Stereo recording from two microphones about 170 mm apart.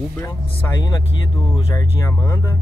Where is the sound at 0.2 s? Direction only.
20° left (ahead or behind).